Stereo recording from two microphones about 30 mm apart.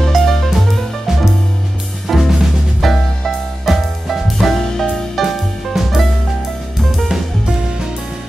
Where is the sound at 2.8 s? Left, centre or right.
Centre.